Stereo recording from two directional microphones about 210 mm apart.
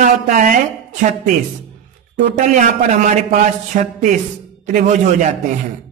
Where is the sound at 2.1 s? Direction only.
35° right (ahead or behind).